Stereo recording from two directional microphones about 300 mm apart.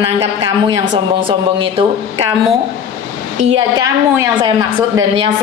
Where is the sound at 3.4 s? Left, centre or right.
Centre.